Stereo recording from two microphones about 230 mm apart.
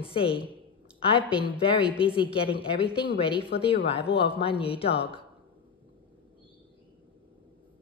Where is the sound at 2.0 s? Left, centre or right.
Left.